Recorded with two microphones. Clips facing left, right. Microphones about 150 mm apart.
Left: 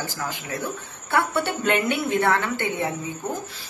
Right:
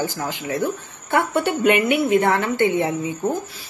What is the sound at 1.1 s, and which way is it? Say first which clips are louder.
A woman's voice: right 3 dB; 15° right (ahead or behind).